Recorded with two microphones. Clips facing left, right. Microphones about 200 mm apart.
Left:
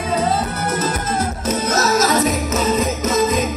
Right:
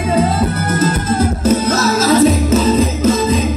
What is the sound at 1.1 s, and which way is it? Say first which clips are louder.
Music: right 7 dB; 30° right (ahead or behind).